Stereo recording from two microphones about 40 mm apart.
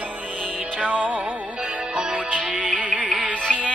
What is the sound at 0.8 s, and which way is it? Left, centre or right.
Music, right.